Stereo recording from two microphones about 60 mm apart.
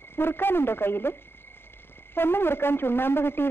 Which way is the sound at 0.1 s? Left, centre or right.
Left.